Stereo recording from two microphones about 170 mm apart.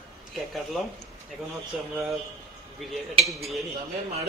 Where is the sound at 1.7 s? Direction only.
Centre (ahead or behind).